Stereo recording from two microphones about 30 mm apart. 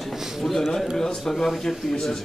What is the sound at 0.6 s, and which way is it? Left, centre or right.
Speech, centre.